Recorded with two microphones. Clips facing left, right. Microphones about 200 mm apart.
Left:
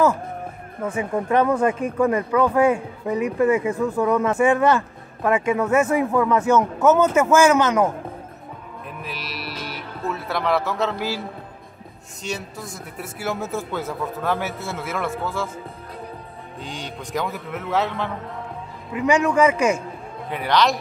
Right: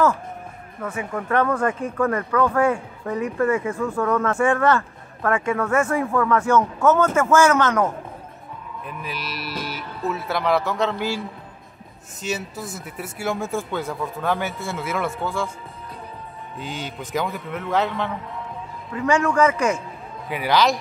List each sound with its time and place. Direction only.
0.8 s speech: 30° left (ahead or behind)
1.3 s speech: 15° left (ahead or behind)
8.8 s speech: centre (ahead or behind)
16.5 s speech: 5° right (ahead or behind)
18.9 s speech: 15° left (ahead or behind)
20.2 s speech: 5° right (ahead or behind)